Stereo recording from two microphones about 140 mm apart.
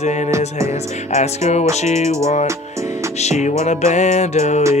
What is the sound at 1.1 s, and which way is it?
Music, 55° left (ahead or behind).